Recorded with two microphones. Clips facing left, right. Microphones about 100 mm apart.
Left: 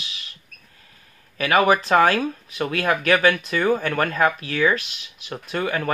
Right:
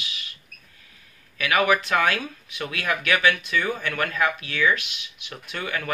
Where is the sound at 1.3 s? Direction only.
35° left (ahead or behind).